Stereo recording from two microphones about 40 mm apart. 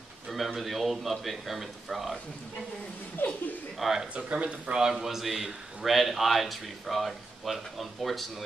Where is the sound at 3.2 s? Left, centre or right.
Left.